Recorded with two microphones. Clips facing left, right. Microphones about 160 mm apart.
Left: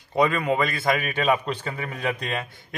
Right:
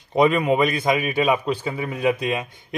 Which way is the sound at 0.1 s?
20° right (ahead or behind).